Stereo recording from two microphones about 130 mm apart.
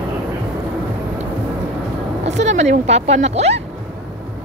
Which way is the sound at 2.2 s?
60° right (ahead or behind).